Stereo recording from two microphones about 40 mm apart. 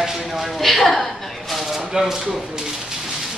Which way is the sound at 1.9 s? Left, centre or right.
Centre.